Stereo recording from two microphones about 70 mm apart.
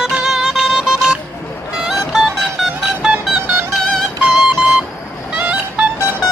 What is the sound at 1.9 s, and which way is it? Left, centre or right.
Music, centre.